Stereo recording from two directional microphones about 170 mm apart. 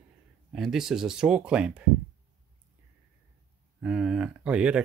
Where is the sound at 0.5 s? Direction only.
Centre (ahead or behind).